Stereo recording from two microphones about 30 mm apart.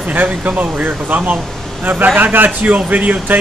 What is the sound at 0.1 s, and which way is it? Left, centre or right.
Speech, right.